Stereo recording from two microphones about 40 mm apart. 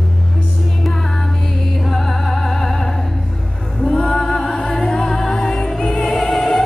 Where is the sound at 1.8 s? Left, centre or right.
Centre.